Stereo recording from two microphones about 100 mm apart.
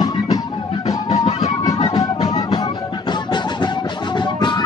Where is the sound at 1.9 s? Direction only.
45° left (ahead or behind).